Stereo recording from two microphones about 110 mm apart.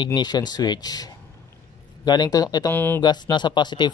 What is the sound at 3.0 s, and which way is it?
Speech, 40° left (ahead or behind).